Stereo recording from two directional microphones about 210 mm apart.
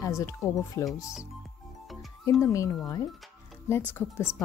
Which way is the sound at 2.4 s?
15° left (ahead or behind).